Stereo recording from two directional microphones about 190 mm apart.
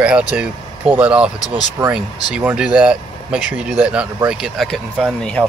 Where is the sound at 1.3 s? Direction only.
20° left (ahead or behind).